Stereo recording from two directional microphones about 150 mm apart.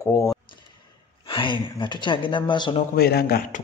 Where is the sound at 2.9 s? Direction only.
90° left.